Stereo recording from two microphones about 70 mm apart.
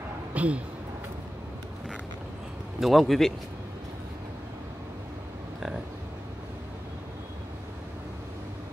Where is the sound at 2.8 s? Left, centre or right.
Centre.